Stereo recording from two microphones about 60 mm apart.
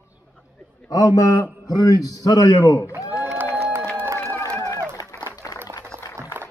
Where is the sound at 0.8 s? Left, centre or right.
Left.